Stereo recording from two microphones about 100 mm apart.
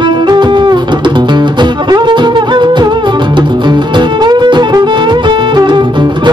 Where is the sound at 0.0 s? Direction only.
50° right (ahead or behind).